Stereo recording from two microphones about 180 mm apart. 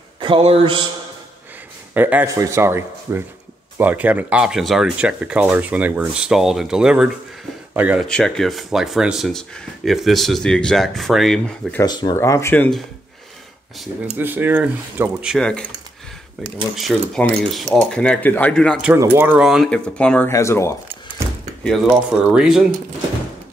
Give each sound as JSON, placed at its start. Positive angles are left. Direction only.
{"t": 0.2, "sound": "speech", "side_deg": -30}
{"t": 2.0, "sound": "speech", "side_deg": -10}
{"t": 8.1, "sound": "speech", "side_deg": 5}
{"t": 11.8, "sound": "speech", "side_deg": 25}
{"t": 14.1, "sound": "speech", "side_deg": -10}
{"t": 16.7, "sound": "speech", "side_deg": 0}
{"t": 18.9, "sound": "speech", "side_deg": -10}
{"t": 22.2, "sound": "speech", "side_deg": -5}